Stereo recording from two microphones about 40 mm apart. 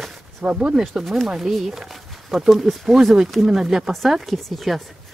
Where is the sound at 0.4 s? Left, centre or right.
Right.